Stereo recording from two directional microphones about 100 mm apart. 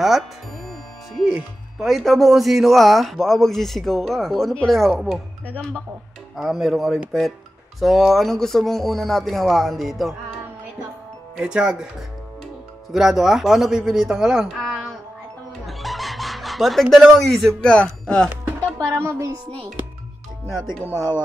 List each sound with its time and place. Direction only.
1.3 s speech: 5° right (ahead or behind)
6.3 s speech: centre (ahead or behind)
11.3 s speech: 10° right (ahead or behind)
12.9 s speech: 5° right (ahead or behind)
15.6 s snicker: centre (ahead or behind)
17.6 s speech: 10° left (ahead or behind)
18.9 s music: 25° right (ahead or behind)
20.9 s speech: 30° left (ahead or behind)